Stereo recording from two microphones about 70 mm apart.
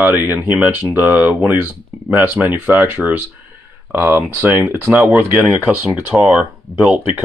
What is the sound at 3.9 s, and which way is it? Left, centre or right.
Speech, right.